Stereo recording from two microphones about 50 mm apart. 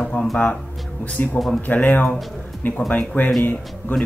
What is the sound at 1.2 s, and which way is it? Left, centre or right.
Speech, left.